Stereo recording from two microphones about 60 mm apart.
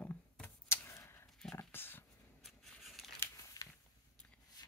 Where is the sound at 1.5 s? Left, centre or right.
Left.